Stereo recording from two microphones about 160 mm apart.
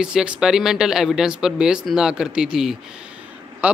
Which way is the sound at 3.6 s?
10° right (ahead or behind).